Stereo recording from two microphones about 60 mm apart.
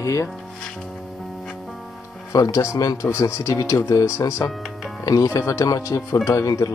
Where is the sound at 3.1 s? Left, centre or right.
Left.